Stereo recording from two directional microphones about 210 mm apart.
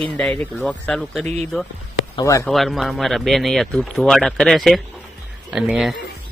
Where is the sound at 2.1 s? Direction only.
15° left (ahead or behind).